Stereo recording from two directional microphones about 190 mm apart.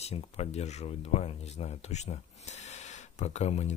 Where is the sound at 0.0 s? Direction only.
35° left (ahead or behind).